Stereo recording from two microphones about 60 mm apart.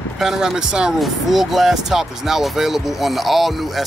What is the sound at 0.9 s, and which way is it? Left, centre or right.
Speech, centre.